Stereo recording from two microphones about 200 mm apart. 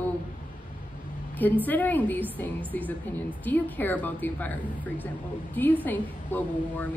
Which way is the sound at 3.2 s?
10° left (ahead or behind).